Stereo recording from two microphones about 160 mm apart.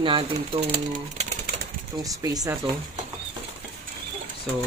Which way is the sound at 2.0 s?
25° right (ahead or behind).